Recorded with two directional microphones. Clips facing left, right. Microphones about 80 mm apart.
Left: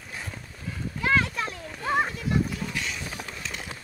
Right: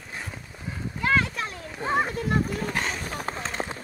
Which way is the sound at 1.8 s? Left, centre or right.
Right.